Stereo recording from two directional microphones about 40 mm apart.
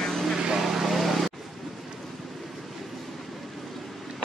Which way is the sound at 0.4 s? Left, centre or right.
Centre.